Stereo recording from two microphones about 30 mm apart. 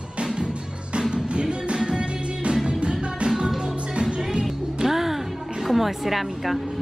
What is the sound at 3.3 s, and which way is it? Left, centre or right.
Music, centre.